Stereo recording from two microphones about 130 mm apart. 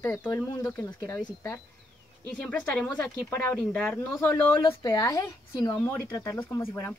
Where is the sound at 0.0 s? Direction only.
20° left (ahead or behind).